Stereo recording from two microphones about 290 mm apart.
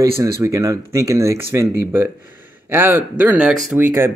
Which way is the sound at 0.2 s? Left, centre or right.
Centre.